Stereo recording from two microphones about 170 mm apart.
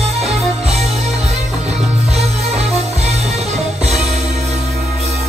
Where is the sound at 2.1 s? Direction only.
40° right (ahead or behind).